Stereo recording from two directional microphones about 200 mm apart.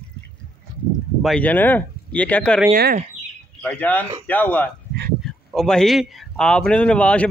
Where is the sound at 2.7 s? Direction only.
50° right (ahead or behind).